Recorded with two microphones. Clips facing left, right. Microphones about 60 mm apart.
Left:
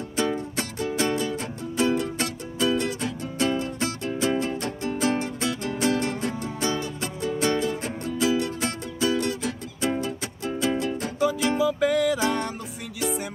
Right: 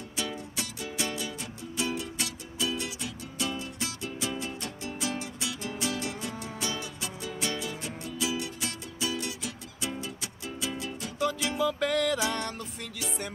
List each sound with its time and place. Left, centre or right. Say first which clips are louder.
0.1 s music: left 10 dB; left
11.5 s music: left 5 dB; centre